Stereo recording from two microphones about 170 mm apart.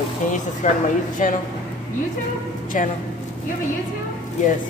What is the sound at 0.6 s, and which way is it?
Speech, 45° left (ahead or behind).